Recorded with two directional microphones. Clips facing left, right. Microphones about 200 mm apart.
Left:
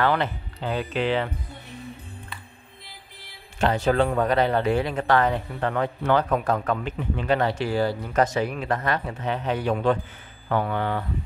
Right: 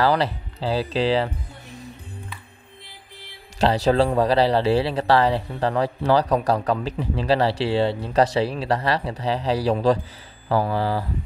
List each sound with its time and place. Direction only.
0.0 s speech: 35° right (ahead or behind)
3.5 s speech: 35° right (ahead or behind)